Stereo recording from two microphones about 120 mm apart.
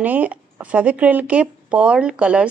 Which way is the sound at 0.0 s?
15° right (ahead or behind).